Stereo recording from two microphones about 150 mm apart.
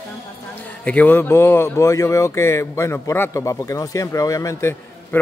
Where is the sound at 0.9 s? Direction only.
10° left (ahead or behind).